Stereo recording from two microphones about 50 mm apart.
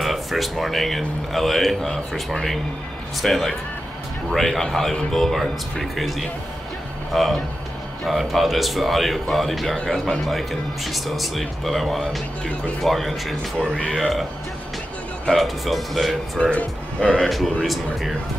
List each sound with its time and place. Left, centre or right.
0.0 s speech: centre
13.6 s speech: left
13.9 s speech: centre
15.2 s speech: centre
16.3 s speech: left